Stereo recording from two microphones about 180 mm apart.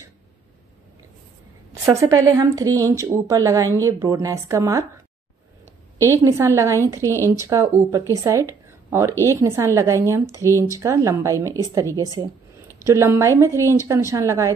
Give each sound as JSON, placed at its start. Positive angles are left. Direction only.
{"t": 1.7, "sound": "a woman's voice", "side_deg": -15}
{"t": 6.0, "sound": "a woman's voice", "side_deg": -15}
{"t": 7.0, "sound": "speech", "side_deg": 15}
{"t": 7.4, "sound": "a woman's voice", "side_deg": -15}